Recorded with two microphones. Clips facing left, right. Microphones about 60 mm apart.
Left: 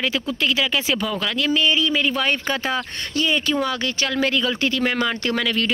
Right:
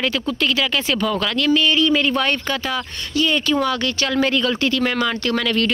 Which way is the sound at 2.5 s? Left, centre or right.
Left.